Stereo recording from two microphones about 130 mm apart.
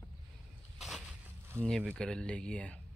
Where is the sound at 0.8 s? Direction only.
5° right (ahead or behind).